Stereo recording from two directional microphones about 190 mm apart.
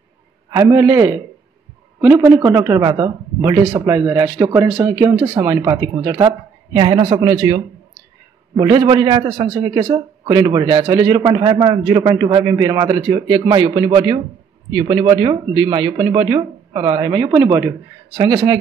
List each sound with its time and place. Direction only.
0.5 s a man's voice: 15° right (ahead or behind)